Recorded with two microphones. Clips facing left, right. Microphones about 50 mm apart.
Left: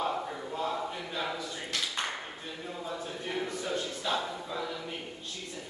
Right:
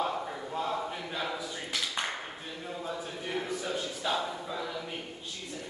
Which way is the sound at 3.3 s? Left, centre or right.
Centre.